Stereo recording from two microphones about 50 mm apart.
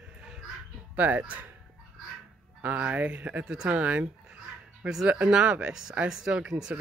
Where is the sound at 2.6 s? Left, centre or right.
Right.